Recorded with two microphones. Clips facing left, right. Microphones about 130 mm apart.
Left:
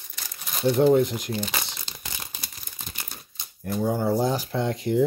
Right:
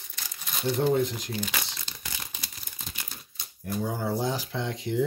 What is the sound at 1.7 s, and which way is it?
Crumpling, 20° left (ahead or behind).